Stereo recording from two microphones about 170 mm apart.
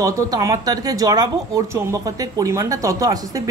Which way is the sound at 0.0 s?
20° right (ahead or behind).